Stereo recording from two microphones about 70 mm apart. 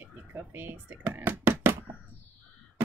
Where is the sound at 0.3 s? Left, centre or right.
Right.